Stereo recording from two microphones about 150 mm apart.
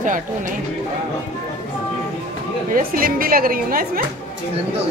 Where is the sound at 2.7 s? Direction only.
70° right (ahead or behind).